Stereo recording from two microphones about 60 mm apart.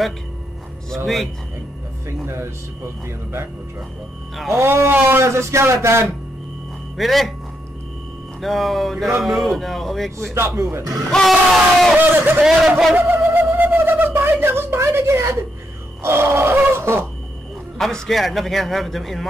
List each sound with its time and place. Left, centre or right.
1.0 s a man's voice: centre
2.2 s speech: right
4.5 s speech: right
7.0 s a man's voice: centre
8.4 s a man's voice: centre
10.3 s speech: right
10.8 s speech: right
12.0 s a man's voice: right
12.4 s a man's voice: centre
12.9 s a sound: right
16.0 s speech: right
17.7 s a man's voice: centre